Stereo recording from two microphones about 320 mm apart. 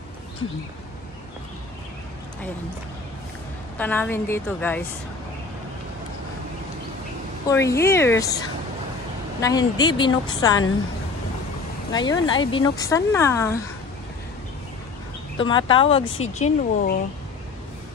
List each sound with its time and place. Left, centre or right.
3.7 s a woman's voice: centre
7.4 s speech: centre
9.4 s speech: centre
11.9 s speech: centre
15.3 s speech: centre
16.0 s speech: left
16.3 s speech: left